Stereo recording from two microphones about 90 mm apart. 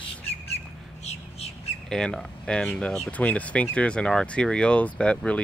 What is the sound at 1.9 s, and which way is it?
Speech, 5° left (ahead or behind).